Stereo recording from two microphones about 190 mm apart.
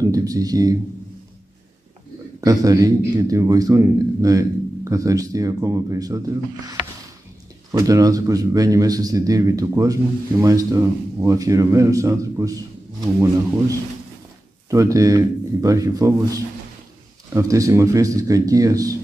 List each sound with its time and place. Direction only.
0.0 s a man's voice: 20° right (ahead or behind)
2.4 s a man's voice: 20° right (ahead or behind)
14.7 s a man's voice: 15° right (ahead or behind)